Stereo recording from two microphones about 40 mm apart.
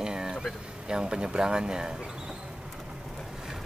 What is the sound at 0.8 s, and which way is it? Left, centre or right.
Speech, right.